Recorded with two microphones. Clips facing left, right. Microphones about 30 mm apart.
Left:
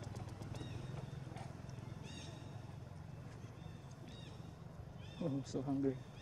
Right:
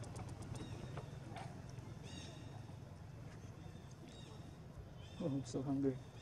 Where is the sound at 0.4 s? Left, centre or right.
Centre.